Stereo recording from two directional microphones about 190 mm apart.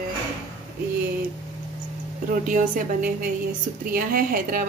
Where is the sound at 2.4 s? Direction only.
45° right (ahead or behind).